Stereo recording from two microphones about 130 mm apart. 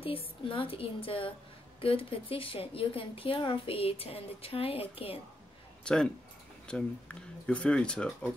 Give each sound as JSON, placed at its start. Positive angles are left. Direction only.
{"t": 0.0, "sound": "a woman's voice", "side_deg": 45}
{"t": 5.9, "sound": "speech", "side_deg": 5}